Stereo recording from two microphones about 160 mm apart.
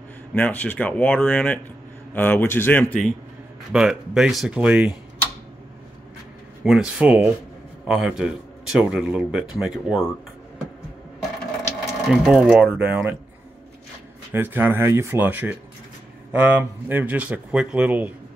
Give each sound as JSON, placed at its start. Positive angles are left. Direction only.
{"t": 0.3, "sound": "speech", "side_deg": 10}
{"t": 3.7, "sound": "speech", "side_deg": -5}
{"t": 6.6, "sound": "speech", "side_deg": -5}
{"t": 11.8, "sound": "speech", "side_deg": -5}
{"t": 14.3, "sound": "speech", "side_deg": -15}